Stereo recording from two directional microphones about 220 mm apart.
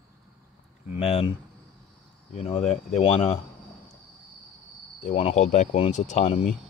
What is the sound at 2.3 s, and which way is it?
Speech, 30° left (ahead or behind).